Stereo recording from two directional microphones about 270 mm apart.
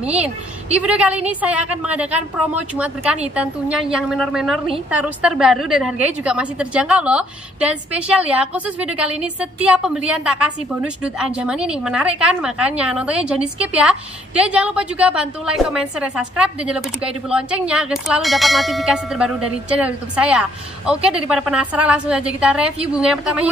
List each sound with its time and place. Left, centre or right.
0.7 s a woman's voice: centre